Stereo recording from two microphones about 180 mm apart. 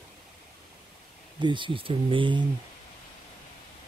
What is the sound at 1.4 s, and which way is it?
Speech, 25° right (ahead or behind).